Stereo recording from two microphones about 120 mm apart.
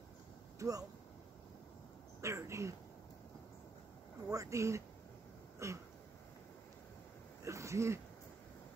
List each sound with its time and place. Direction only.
0.6 s speech: 30° right (ahead or behind)
2.2 s speech: 25° right (ahead or behind)
4.3 s speech: 25° right (ahead or behind)
7.4 s wheeze: 25° right (ahead or behind)